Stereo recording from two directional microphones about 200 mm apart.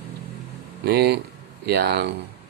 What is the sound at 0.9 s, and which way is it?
Speech, 50° right (ahead or behind).